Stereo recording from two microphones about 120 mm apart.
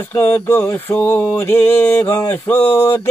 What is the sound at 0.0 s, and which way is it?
Mantra, 20° left (ahead or behind).